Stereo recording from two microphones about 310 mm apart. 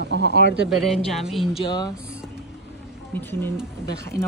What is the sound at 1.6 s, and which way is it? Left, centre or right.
Speech, centre.